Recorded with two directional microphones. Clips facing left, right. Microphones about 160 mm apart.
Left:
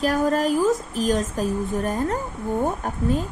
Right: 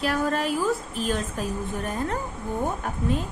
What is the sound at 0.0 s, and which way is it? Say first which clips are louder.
Speech: left 4 dB; 40° left (ahead or behind).